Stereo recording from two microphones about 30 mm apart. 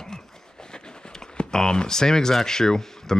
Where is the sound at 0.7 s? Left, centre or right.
Left.